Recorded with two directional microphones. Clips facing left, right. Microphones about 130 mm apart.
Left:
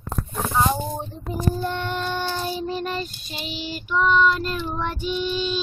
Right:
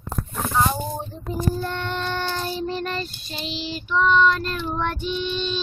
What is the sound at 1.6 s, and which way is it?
Child singing, 10° left (ahead or behind).